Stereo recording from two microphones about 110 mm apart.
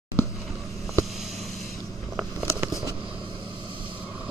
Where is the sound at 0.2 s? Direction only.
25° left (ahead or behind).